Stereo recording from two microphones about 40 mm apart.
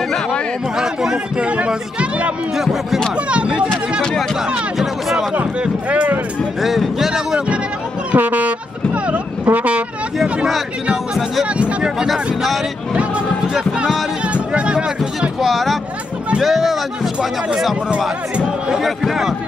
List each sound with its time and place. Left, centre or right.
0.7 s speech: centre
2.0 s speech: right
2.5 s speech: centre
5.3 s a sound: right
6.6 s music: centre
7.1 s music: centre
8.1 s speech: right
14.3 s music: right
15.0 s speech: centre
18.0 s speech: centre
18.8 s speech: centre